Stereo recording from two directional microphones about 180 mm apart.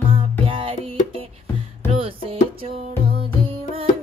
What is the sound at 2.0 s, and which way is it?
Music, 30° right (ahead or behind).